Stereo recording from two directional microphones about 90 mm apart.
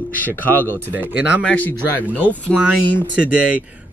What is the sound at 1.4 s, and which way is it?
Speech, 20° left (ahead or behind).